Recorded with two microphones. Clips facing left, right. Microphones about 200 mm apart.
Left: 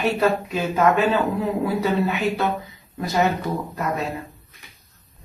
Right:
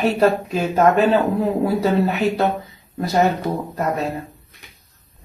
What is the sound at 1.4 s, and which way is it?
Speech, 35° right (ahead or behind).